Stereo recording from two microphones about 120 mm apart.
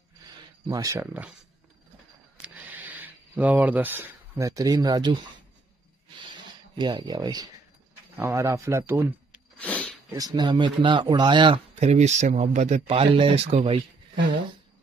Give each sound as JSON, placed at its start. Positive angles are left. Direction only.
{"t": 0.7, "sound": "speech", "side_deg": -30}
{"t": 2.4, "sound": "a sound", "side_deg": -15}
{"t": 4.5, "sound": "speech", "side_deg": -30}
{"t": 6.8, "sound": "speech", "side_deg": -35}
{"t": 8.2, "sound": "speech", "side_deg": -20}
{"t": 9.6, "sound": "sniff", "side_deg": 10}
{"t": 10.1, "sound": "speech", "side_deg": -35}
{"t": 11.8, "sound": "speech", "side_deg": -70}
{"t": 12.9, "sound": "speech", "side_deg": -50}